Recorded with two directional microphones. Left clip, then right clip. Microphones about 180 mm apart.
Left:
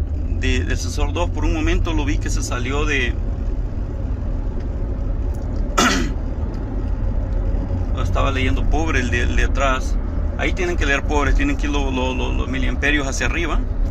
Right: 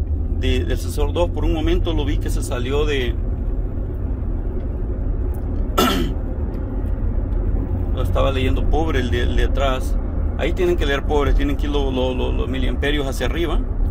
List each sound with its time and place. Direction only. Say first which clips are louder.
0.4 s speech: even; 20° right (ahead or behind)
5.8 s cough: left 1 dB; 20° right (ahead or behind)
8.0 s speech: right 1 dB; 25° right (ahead or behind)